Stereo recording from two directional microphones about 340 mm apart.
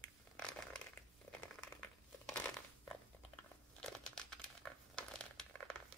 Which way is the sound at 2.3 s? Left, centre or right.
Centre.